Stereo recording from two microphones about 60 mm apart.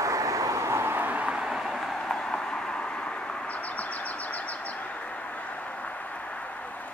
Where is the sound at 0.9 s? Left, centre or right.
Right.